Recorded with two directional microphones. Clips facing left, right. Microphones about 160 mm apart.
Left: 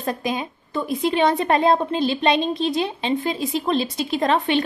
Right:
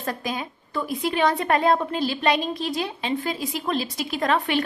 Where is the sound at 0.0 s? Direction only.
20° left (ahead or behind).